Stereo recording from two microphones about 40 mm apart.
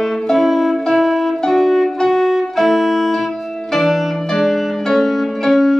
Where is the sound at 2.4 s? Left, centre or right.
Centre.